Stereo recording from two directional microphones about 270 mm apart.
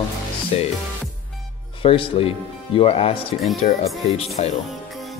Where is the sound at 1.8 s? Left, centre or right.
Centre.